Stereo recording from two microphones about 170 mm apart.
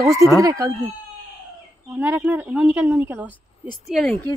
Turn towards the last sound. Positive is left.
turn(degrees=0)  # may be behind; listen again after turning